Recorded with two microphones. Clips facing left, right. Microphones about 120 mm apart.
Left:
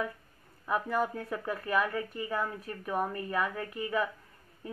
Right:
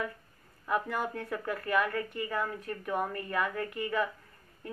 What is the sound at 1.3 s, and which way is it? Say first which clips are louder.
Speech: right 4 dB; 15° left (ahead or behind).